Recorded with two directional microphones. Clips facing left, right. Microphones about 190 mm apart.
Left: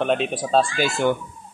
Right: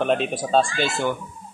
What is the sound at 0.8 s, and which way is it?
Speech, 15° left (ahead or behind).